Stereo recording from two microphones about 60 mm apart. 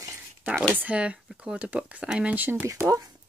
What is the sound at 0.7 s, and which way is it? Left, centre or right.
Speech, right.